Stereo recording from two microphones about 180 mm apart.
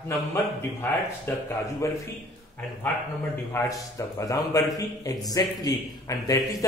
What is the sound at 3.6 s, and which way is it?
A man's voice, 15° left (ahead or behind).